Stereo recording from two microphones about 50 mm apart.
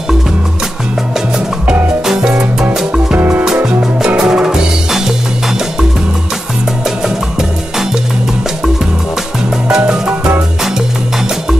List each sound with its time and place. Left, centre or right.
2.7 s music: centre
3.2 s music: right
4.2 s music: centre
9.7 s music: centre